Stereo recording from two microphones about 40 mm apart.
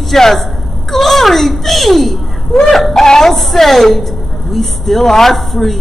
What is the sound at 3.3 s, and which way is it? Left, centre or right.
A man's voice, centre.